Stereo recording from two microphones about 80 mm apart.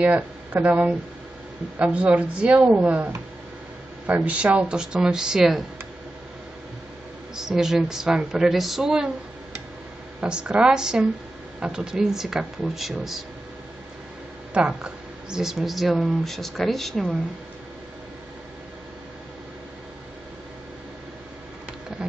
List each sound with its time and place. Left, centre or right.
0.0 s a woman's voice: centre
4.1 s a woman's voice: centre
7.3 s a woman's voice: centre
10.2 s a woman's voice: centre
14.5 s speech: centre